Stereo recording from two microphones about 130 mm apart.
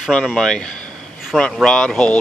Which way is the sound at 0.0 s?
Centre (ahead or behind).